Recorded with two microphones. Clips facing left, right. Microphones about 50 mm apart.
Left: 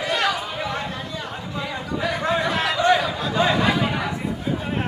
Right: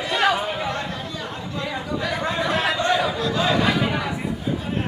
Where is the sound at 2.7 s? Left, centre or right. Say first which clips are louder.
Left 3 dB; left.